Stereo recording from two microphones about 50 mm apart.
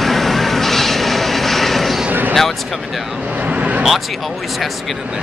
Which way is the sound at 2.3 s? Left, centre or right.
Centre.